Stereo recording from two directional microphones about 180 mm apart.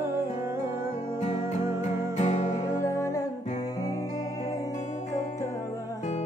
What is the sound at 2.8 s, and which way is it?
Music, 15° left (ahead or behind).